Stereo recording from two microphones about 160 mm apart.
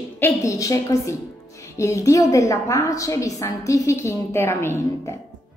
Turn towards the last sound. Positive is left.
turn(degrees=15)  # may be behind; listen again after turning